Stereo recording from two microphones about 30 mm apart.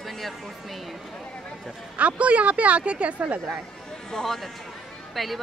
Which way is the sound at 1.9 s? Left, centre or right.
Right.